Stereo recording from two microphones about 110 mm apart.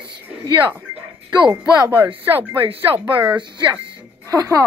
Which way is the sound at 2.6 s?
55° right (ahead or behind).